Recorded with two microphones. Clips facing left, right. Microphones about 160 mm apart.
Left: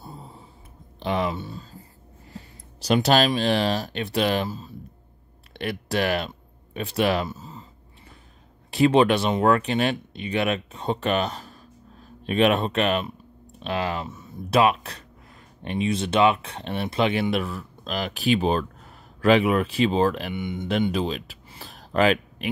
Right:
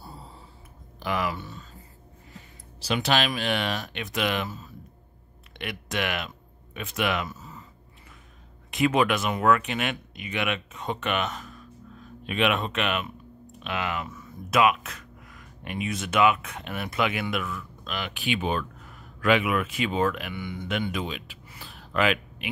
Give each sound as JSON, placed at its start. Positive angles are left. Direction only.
{"t": 0.0, "sound": "a sound", "side_deg": 20}
{"t": 2.9, "sound": "speech", "side_deg": 40}
{"t": 8.6, "sound": "speech", "side_deg": 30}
{"t": 20.3, "sound": "speech", "side_deg": 20}
{"t": 20.8, "sound": "speech", "side_deg": 30}